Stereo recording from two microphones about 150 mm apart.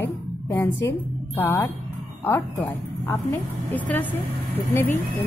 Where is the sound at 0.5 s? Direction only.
20° left (ahead or behind).